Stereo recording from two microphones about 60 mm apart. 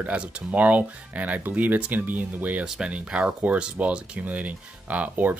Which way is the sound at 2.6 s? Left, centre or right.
Centre.